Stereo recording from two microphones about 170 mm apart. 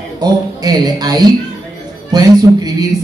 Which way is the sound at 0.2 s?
25° right (ahead or behind).